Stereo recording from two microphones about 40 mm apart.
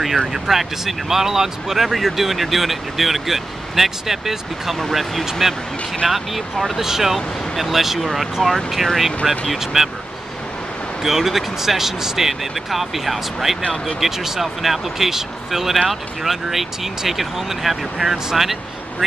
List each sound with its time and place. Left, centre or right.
0.3 s speech: centre
11.0 s speech: centre
13.6 s speech: left
13.9 s speech: centre